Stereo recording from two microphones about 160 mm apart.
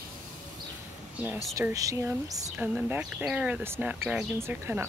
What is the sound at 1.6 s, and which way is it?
Speech, 20° right (ahead or behind).